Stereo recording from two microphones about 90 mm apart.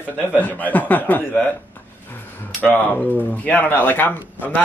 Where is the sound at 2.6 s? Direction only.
20° left (ahead or behind).